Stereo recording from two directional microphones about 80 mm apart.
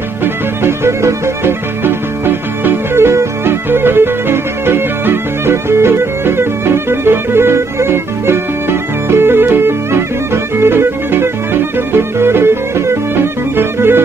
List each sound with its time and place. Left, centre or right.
0.2 s music: right